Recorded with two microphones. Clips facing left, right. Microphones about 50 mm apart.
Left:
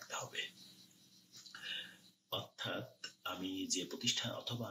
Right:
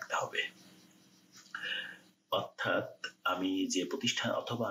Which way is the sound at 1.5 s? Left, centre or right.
Right.